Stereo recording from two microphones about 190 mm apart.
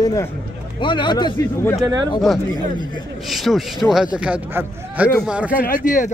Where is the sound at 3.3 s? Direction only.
Centre (ahead or behind).